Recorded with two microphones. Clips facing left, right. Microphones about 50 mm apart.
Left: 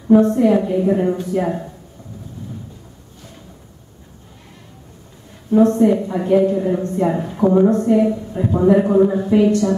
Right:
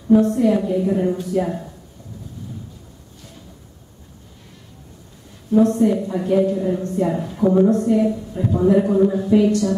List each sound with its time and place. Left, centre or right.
0.3 s speech: centre
5.5 s speech: left